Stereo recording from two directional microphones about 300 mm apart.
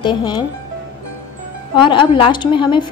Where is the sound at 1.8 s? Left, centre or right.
Centre.